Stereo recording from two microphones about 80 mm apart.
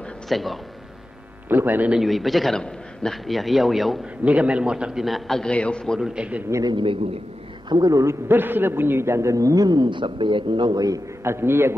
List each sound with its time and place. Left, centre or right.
0.3 s a man's voice: centre
1.5 s a man's voice: right
1.9 s a man's voice: centre
4.2 s a man's voice: centre
5.5 s a man's voice: centre
5.9 s a man's voice: centre
6.6 s a man's voice: right
7.9 s a man's voice: right
8.3 s a man's voice: right
11.2 s a man's voice: right